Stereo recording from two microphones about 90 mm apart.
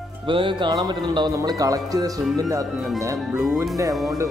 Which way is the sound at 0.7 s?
55° right (ahead or behind).